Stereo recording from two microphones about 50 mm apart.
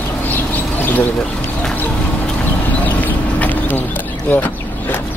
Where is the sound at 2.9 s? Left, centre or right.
Left.